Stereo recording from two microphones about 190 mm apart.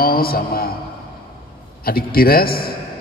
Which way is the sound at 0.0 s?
50° left (ahead or behind).